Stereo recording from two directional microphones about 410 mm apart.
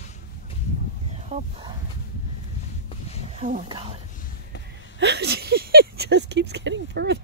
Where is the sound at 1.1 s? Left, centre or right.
Centre.